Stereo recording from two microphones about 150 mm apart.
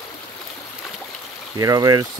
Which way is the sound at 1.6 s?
25° right (ahead or behind).